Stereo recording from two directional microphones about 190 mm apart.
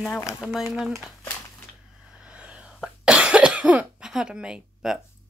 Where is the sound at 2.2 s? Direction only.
5° right (ahead or behind).